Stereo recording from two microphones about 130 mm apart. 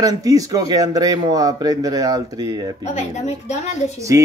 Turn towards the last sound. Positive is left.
turn(degrees=60)  # may be behind; listen again after turning